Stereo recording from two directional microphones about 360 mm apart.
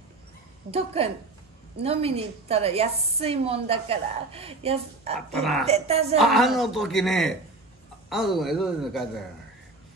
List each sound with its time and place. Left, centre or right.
0.7 s a woman's voice: centre
5.3 s a woman's voice: centre
5.7 s a woman's voice: centre
6.1 s a woman's voice: centre